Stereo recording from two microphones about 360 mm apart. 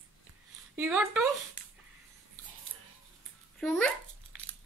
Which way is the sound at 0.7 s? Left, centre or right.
Centre.